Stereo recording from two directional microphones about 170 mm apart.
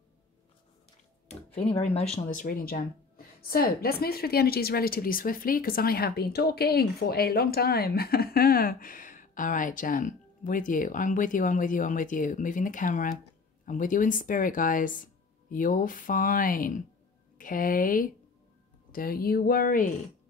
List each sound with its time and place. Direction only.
1.3 s speech: 40° left (ahead or behind)
2.1 s a woman's voice: 50° left (ahead or behind)